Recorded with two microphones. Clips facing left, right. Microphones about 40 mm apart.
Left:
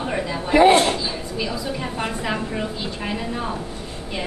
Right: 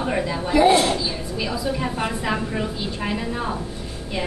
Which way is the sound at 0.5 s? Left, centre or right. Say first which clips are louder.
Left 2 dB; left.